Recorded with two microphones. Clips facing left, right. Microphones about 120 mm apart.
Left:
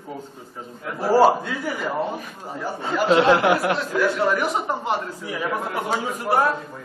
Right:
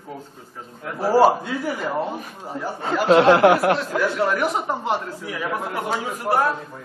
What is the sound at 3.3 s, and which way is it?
Speech, 50° right (ahead or behind).